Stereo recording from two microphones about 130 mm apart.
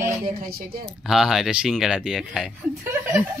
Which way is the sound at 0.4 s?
90° right.